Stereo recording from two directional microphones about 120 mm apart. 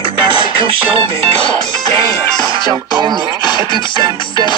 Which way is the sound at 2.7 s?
35° right (ahead or behind).